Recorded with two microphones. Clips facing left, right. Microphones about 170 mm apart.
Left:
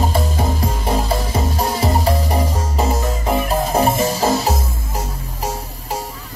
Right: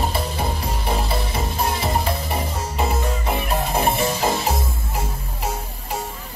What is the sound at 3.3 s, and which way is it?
Music, 40° left (ahead or behind).